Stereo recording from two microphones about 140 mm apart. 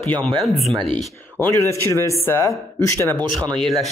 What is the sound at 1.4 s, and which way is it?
Speech, 20° left (ahead or behind).